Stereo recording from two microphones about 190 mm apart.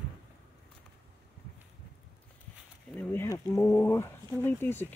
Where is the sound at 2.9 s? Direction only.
10° left (ahead or behind).